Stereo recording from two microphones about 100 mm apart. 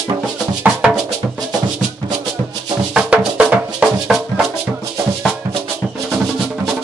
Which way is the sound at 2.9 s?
10° right (ahead or behind).